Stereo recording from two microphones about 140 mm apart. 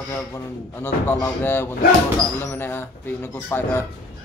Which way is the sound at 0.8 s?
15° left (ahead or behind).